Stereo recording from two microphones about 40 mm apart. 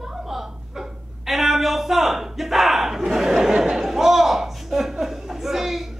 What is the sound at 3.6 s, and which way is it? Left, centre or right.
Chuckle, centre.